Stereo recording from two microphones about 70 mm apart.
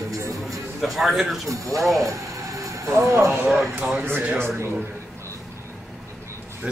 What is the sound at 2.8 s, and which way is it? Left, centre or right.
Speech, right.